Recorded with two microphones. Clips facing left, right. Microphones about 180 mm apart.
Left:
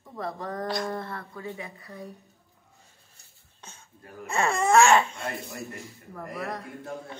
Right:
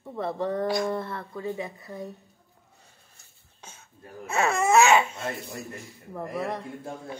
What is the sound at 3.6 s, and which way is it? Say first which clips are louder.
Speech: right 1 dB; 10° right (ahead or behind).